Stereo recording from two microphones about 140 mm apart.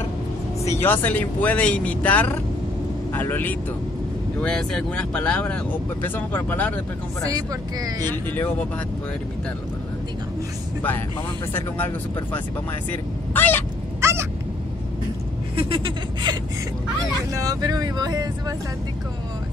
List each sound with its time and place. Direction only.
0.8 s speech: 15° left (ahead or behind)
7.2 s speech: 25° right (ahead or behind)
8.1 s speech: 15° left (ahead or behind)
13.3 s cat: 15° left (ahead or behind)
14.0 s a sound: 20° right (ahead or behind)
15.5 s speech: 35° right (ahead or behind)
17.4 s speech: 25° right (ahead or behind)